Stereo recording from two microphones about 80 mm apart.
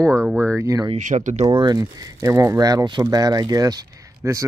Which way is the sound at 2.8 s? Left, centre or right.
Right.